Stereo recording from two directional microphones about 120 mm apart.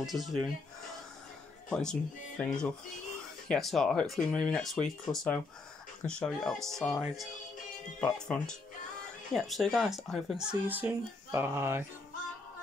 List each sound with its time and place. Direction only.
0.0 s speech: centre (ahead or behind)
1.7 s speech: 5° left (ahead or behind)
8.0 s speech: 5° left (ahead or behind)
10.7 s speech: 15° right (ahead or behind)